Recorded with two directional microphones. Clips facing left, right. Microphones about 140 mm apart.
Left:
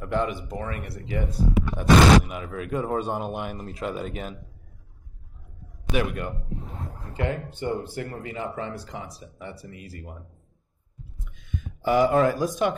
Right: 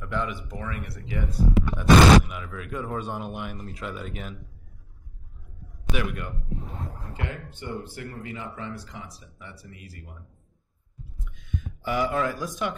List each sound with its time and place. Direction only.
0.0 s speech: 40° left (ahead or behind)
5.9 s speech: 35° left (ahead or behind)
11.8 s speech: 35° left (ahead or behind)